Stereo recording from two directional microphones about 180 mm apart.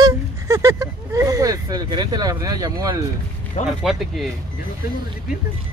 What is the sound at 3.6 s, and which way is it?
Speech, centre (ahead or behind).